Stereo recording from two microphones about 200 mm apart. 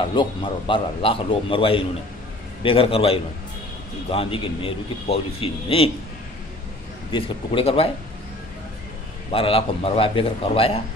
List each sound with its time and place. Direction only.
0.0 s a man's voice: 25° left (ahead or behind)
7.1 s a man's voice: 25° left (ahead or behind)
9.3 s a man's voice: 30° left (ahead or behind)